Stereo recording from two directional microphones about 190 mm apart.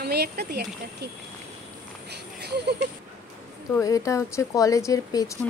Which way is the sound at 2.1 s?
60° right (ahead or behind).